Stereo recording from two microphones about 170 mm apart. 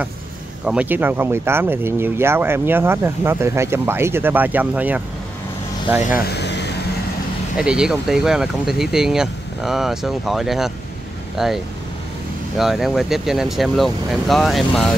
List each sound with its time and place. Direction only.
0.7 s speech: 10° right (ahead or behind)
6.1 s vehicle: 75° left (ahead or behind)
7.5 s speech: 5° right (ahead or behind)